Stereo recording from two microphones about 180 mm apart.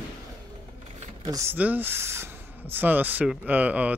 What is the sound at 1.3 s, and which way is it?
Speech, 15° right (ahead or behind).